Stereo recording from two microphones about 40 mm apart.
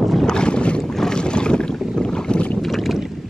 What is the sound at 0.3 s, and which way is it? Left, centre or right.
Boat, left.